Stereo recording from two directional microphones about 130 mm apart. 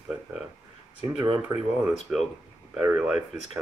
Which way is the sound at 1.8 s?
10° right (ahead or behind).